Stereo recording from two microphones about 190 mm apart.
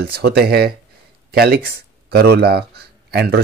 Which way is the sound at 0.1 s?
55° right (ahead or behind).